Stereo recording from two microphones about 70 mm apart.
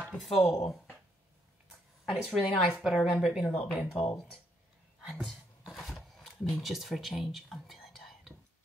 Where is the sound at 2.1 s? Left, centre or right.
Centre.